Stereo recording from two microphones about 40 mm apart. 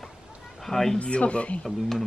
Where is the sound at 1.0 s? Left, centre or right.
Left.